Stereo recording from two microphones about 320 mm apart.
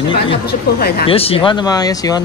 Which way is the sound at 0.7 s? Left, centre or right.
Left.